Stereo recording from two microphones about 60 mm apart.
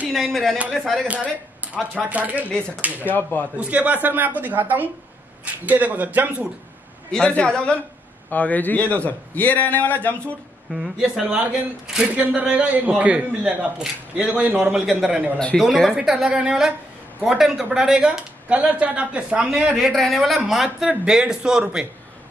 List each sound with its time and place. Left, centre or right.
0.1 s speech: centre
2.0 s a man's voice: right
3.2 s a man's voice: left
3.5 s a man's voice: right
7.1 s a man's voice: centre
8.3 s a man's voice: left
10.7 s speech: centre
11.2 s a man's voice: right
14.9 s speech: centre
16.0 s speech: centre
19.5 s speech: centre